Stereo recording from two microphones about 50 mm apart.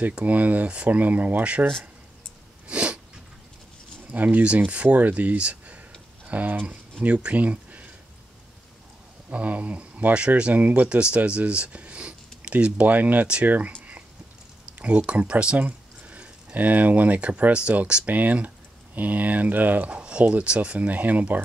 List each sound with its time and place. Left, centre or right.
0.2 s speech: right
2.7 s sneeze: right
4.1 s speech: right
9.3 s speech: right
14.8 s speech: right
18.0 s speech: right
19.9 s speech: right